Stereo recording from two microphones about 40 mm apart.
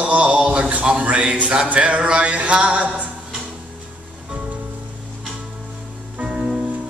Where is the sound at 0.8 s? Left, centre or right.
Right.